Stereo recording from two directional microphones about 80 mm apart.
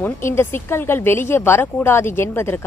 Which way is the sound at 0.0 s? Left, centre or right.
Left.